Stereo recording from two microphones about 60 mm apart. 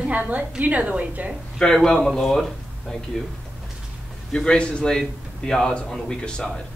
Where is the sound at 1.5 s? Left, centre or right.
Centre.